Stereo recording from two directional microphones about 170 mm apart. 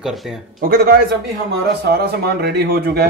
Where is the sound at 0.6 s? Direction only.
60° right (ahead or behind).